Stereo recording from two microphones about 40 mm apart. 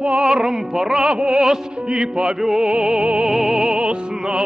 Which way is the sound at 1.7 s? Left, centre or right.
Right.